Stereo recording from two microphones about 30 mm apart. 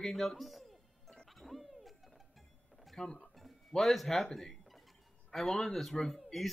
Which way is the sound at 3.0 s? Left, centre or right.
Centre.